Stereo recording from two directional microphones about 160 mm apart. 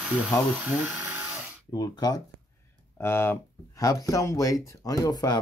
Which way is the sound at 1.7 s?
25° left (ahead or behind).